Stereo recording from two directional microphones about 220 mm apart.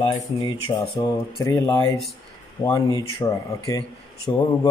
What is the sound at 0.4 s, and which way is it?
A man's voice, 20° left (ahead or behind).